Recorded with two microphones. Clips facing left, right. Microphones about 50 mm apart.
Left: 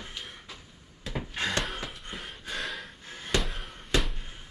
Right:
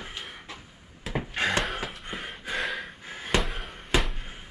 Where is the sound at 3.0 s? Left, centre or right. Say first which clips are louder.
Right 3 dB; right.